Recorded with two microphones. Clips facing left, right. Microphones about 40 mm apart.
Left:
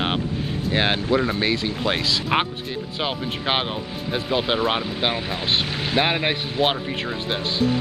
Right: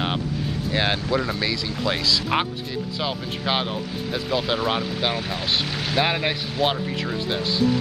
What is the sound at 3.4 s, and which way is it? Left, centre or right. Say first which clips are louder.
Speech: even; left.